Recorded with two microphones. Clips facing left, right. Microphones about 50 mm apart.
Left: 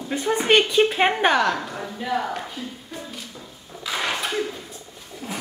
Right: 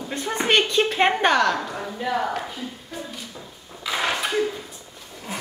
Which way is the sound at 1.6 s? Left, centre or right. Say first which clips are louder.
Right 2 dB; centre.